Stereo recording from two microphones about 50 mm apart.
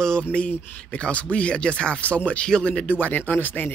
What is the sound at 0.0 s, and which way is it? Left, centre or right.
Speech, centre.